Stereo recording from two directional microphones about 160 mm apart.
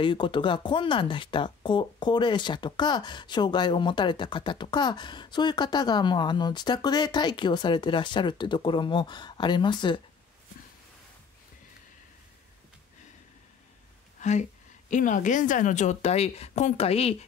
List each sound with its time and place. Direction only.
0.0 s speech: 30° left (ahead or behind)
14.9 s speech: 50° left (ahead or behind)